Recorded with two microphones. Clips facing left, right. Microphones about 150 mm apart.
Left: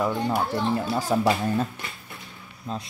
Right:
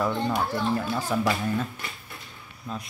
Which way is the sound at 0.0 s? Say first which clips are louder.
Left 1 dB; 15° left (ahead or behind).